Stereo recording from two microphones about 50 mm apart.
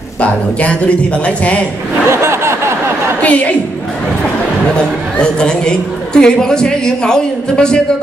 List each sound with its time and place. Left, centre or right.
0.2 s a man's voice: left
2.0 s a sound: right
3.2 s a woman's voice: left
5.2 s a woman's voice: centre